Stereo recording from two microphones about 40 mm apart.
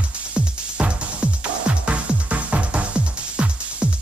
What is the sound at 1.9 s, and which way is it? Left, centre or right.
Music, right.